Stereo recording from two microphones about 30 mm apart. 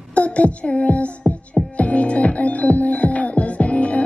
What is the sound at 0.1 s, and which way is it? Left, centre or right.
Music, left.